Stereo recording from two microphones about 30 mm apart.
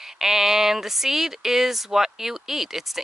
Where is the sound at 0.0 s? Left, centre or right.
Centre.